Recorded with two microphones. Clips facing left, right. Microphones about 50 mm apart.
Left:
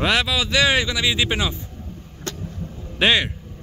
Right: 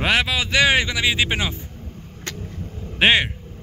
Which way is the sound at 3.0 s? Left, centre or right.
Right.